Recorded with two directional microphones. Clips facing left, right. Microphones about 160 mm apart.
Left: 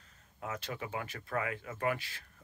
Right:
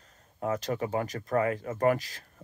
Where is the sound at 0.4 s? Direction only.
40° right (ahead or behind).